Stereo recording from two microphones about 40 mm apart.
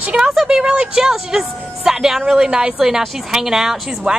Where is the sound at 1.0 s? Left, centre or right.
Centre.